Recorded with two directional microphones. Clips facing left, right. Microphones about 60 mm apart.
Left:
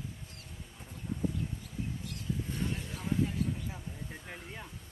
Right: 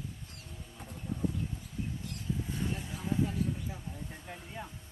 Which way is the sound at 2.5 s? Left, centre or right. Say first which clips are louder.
Even; centre.